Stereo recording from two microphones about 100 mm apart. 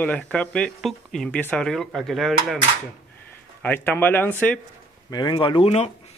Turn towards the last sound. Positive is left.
turn(degrees=80)